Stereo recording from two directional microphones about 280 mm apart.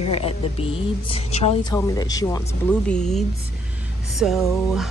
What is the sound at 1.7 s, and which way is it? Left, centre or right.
Speech, centre.